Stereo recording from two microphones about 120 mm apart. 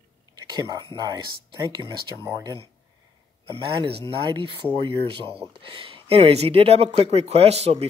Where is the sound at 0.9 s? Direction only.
35° right (ahead or behind).